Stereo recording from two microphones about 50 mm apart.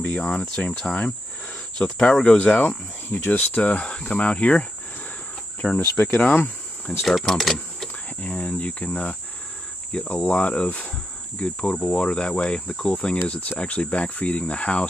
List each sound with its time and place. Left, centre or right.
0.2 s cricket: left
1.8 s speech: centre
2.3 s speech: left
3.1 s speech: left
3.6 s cricket: left
5.8 s speech: left
6.3 s cricket: left
7.0 s speech: centre
8.2 s cricket: left
10.2 s cricket: left